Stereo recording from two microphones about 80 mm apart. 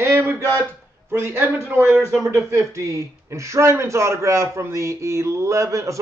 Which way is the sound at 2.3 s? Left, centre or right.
Right.